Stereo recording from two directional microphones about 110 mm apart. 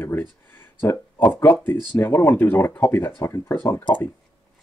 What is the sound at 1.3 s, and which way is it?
Speech, 15° left (ahead or behind).